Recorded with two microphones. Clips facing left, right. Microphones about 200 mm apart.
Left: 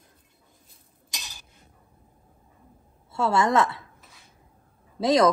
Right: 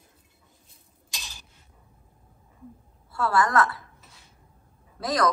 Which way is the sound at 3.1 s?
25° left (ahead or behind).